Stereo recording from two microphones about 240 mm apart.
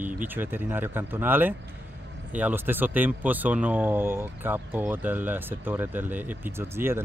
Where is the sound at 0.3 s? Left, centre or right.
Centre.